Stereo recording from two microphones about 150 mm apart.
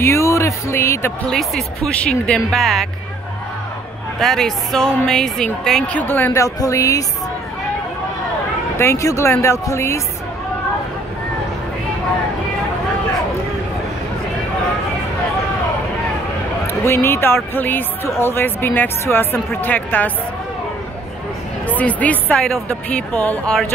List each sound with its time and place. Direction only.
0.0 s speech: 20° left (ahead or behind)
1.3 s a woman's voice: centre (ahead or behind)
4.2 s a woman's voice: centre (ahead or behind); by 7.1 s 20° left (ahead or behind)
8.7 s speech: 20° left (ahead or behind)
16.6 s speech: 15° left (ahead or behind)
21.6 s speech: 10° left (ahead or behind)